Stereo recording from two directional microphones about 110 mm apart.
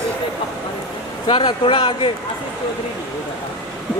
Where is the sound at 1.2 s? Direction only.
50° left (ahead or behind).